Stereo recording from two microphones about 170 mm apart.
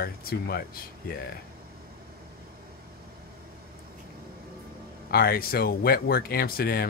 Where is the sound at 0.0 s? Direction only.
65° left (ahead or behind).